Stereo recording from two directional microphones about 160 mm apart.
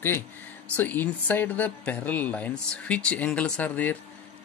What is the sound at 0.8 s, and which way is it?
Speech, 10° left (ahead or behind).